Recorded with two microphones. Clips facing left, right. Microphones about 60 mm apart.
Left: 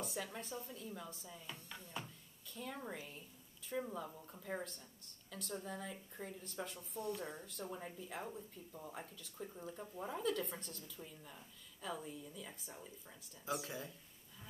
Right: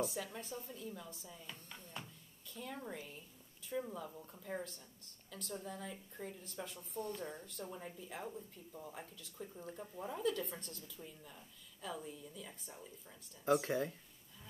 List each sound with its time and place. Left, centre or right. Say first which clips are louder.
0.0 s speech: right 4 dB; centre
2.8 s a woman's voice: even; centre
7.0 s a woman's voice: even; centre
13.5 s speech: right 9 dB; right